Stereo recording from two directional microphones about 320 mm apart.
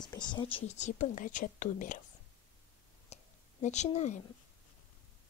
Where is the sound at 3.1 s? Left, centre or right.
Left.